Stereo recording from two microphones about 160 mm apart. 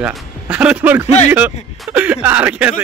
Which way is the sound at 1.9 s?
10° right (ahead or behind).